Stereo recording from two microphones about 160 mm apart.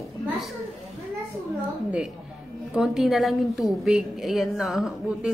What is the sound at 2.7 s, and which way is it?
A woman's voice, centre (ahead or behind).